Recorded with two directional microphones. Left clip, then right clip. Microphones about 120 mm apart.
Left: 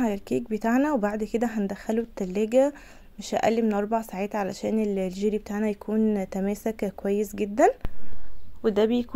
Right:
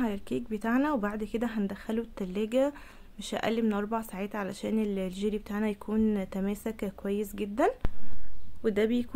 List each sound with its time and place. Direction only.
0.0 s a woman's voice: 35° left (ahead or behind)
5.9 s speech: 10° left (ahead or behind)
6.1 s a woman's voice: 25° left (ahead or behind)
8.6 s speech: 10° left (ahead or behind)